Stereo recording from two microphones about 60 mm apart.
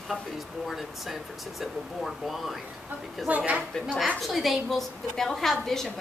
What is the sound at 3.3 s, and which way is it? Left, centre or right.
Speech, right.